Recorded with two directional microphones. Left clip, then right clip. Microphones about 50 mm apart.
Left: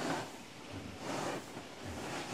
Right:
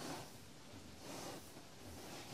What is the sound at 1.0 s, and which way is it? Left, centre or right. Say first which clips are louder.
Waves: left 12 dB; right.